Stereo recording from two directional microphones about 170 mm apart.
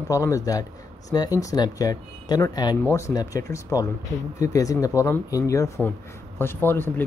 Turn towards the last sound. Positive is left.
turn(degrees=10)  # may be behind; listen again after turning